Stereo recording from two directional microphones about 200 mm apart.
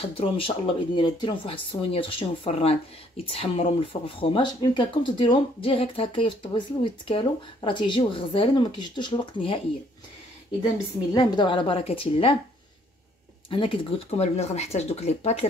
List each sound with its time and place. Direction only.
0.0 s speech: 30° left (ahead or behind)
11.1 s speech: 20° left (ahead or behind)
13.5 s speech: 25° left (ahead or behind)